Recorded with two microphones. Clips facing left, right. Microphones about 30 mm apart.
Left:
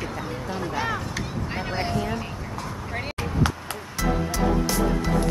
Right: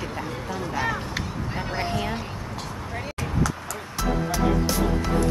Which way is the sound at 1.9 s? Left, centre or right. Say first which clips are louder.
Left 1 dB; right.